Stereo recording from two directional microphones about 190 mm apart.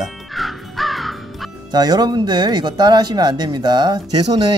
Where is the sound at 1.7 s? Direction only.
20° right (ahead or behind).